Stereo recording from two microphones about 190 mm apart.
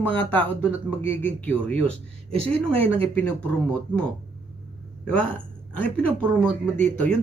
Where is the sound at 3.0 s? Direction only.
10° left (ahead or behind).